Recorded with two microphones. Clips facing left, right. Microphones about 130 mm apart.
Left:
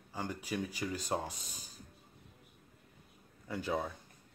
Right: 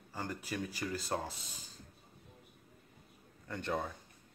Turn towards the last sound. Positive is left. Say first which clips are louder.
# left 1 dB
turn(degrees=5)  # may be behind; listen again after turning